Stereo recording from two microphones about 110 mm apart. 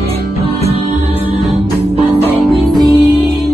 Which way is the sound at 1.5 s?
65° right (ahead or behind).